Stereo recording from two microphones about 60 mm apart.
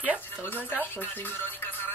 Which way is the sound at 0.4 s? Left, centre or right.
Left.